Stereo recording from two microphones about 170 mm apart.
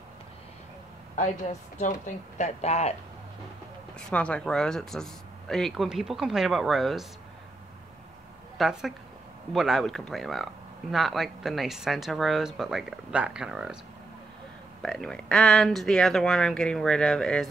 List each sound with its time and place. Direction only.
1.1 s a woman's voice: 45° left (ahead or behind)
4.1 s speech: 5° left (ahead or behind)
8.5 s speech: centre (ahead or behind)
14.8 s speech: 5° left (ahead or behind)